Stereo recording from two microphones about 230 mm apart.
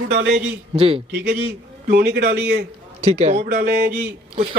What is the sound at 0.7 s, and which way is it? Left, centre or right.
Speech, right.